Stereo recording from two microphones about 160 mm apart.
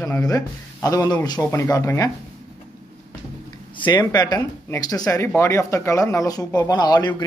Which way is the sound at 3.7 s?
30° left (ahead or behind).